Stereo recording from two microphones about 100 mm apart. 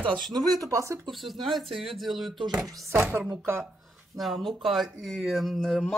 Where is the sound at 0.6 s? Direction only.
35° right (ahead or behind).